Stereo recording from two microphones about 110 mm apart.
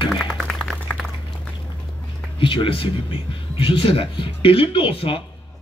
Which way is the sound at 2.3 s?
50° left (ahead or behind).